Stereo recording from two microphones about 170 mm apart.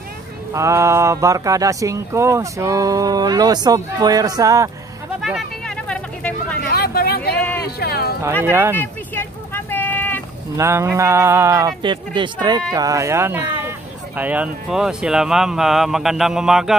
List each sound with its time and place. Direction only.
0.5 s speech: 15° right (ahead or behind)
5.2 s vehicle: centre (ahead or behind)
6.7 s a sound: 65° left (ahead or behind)
8.2 s speech: 15° right (ahead or behind)
8.7 s vehicle: 15° left (ahead or behind)
10.6 s speech: 15° right (ahead or behind)